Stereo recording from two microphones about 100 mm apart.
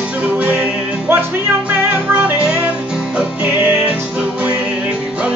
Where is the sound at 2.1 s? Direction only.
15° right (ahead or behind).